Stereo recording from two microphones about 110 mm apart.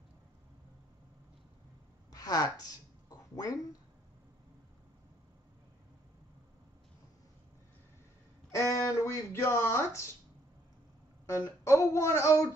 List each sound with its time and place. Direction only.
2.1 s a sound: 35° left (ahead or behind)
8.5 s speech: 25° left (ahead or behind)
11.2 s speech: 25° left (ahead or behind)